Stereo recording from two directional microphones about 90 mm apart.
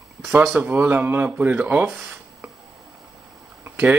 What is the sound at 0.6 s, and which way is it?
Speech, 25° right (ahead or behind).